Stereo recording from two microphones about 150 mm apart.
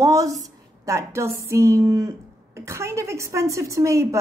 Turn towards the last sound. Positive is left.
turn(degrees=-20)  # may be behind; listen again after turning